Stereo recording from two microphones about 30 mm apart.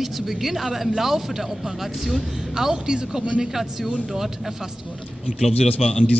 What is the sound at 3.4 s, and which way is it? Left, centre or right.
A woman's voice, centre.